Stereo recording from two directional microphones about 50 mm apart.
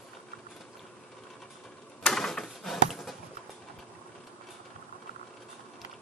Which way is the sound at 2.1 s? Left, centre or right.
Centre.